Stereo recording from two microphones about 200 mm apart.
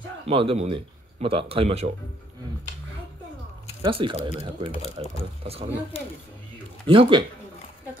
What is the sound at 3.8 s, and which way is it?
A man's voice, 25° right (ahead or behind).